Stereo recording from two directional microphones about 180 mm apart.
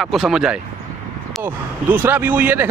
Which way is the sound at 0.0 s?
Centre (ahead or behind).